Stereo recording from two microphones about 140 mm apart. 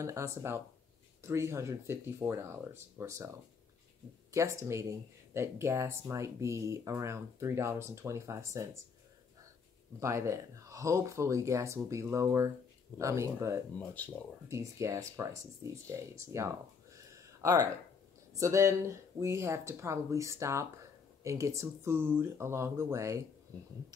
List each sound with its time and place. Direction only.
0.0 s speech: 20° right (ahead or behind)
4.3 s speech: 20° right (ahead or behind)
9.9 s speech: 20° right (ahead or behind)
13.7 s speech: 10° left (ahead or behind)
14.5 s speech: 20° right (ahead or behind)